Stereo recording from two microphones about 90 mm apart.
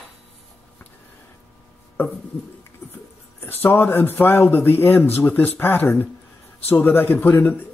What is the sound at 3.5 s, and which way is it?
Speech, 20° left (ahead or behind).